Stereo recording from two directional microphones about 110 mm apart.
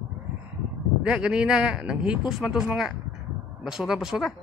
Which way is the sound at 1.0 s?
5° right (ahead or behind).